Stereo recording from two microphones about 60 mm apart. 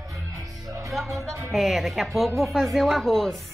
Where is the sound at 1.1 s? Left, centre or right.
Right.